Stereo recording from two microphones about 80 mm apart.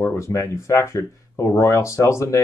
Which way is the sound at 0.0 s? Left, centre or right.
Left.